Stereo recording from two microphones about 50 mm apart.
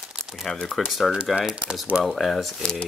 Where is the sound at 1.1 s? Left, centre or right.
Centre.